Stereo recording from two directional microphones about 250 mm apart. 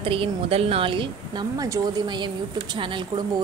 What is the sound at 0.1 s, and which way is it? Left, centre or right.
Speech, right.